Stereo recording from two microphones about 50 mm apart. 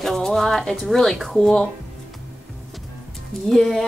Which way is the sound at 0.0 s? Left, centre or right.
Centre.